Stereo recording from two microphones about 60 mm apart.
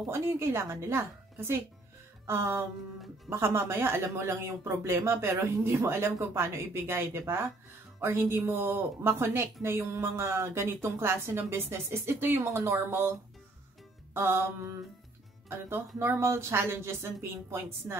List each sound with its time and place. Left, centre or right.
0.1 s a woman's voice: right
14.1 s music: right
16.0 s a woman's voice: right